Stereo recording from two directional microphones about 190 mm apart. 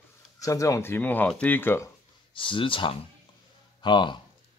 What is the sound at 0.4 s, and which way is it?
Speech, 15° left (ahead or behind).